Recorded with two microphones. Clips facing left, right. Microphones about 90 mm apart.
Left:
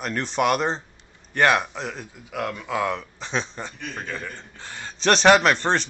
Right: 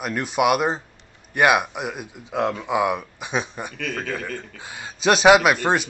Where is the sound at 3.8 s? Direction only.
65° right (ahead or behind).